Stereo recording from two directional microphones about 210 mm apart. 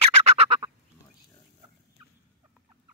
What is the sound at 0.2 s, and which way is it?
Fowl, 30° right (ahead or behind).